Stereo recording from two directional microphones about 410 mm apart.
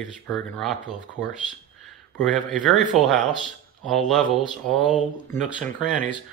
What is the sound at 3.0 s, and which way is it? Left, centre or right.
Speech, centre.